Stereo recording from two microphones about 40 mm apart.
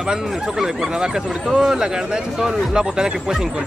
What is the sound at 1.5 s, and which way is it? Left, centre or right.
Speech, centre.